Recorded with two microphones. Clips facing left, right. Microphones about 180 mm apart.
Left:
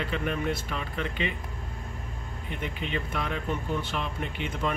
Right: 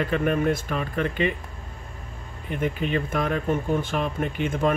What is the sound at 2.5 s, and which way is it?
Speech, 50° right (ahead or behind).